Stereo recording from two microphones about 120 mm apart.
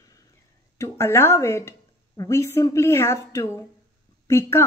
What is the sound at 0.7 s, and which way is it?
A woman's voice, 25° left (ahead or behind).